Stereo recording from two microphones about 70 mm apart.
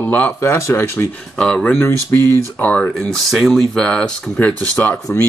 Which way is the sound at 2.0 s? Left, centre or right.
Left.